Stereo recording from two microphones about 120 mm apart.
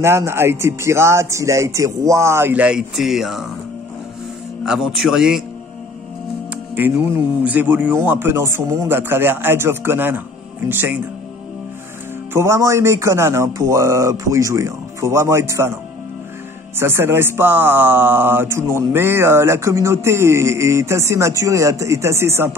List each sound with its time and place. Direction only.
0.0 s a man's voice: 20° right (ahead or behind); by 3.4 s centre (ahead or behind)
4.6 s a man's voice: 5° right (ahead or behind)
6.8 s speech: 15° right (ahead or behind)
12.3 s speech: 20° right (ahead or behind)
16.7 s speech: 20° right (ahead or behind)